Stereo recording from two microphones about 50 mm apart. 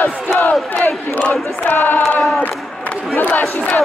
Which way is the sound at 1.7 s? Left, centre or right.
Left.